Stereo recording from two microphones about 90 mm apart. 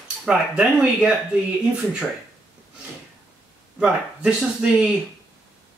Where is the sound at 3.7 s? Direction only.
10° right (ahead or behind).